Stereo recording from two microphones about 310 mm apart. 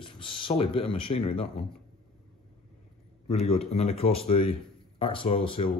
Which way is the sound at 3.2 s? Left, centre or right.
Centre.